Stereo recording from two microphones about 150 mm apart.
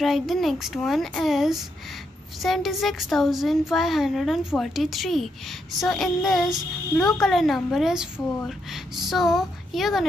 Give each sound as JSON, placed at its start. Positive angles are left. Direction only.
{"t": 0.0, "sound": "speech", "side_deg": 0}